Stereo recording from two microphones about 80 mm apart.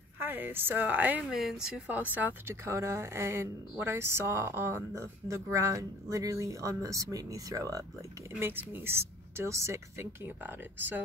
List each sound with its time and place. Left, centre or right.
0.2 s speech: right
1.2 s speech: centre
1.9 s speech: right
2.6 s a woman's voice: right
8.4 s speech: right